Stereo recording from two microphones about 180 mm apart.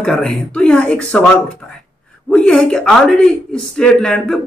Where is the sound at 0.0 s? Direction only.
5° left (ahead or behind).